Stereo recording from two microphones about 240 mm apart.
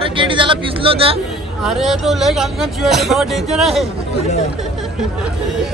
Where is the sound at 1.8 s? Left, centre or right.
Centre.